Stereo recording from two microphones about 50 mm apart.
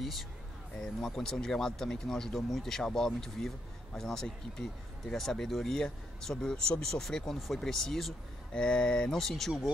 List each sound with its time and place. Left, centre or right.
0.0 s speech: centre